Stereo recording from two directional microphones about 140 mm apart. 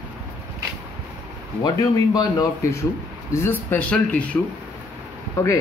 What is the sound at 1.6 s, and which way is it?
A man's voice, 25° left (ahead or behind).